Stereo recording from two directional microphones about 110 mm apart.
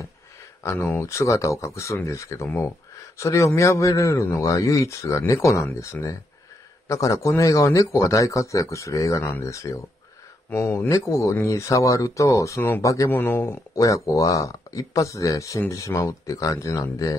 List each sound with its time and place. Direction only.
0.7 s a man's voice: 20° left (ahead or behind)
13.1 s a man's voice: 20° left (ahead or behind)
13.7 s speech: 30° left (ahead or behind)